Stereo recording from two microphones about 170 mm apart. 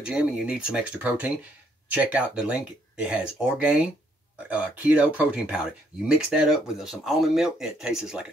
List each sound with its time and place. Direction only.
0.0 s speech: 5° right (ahead or behind)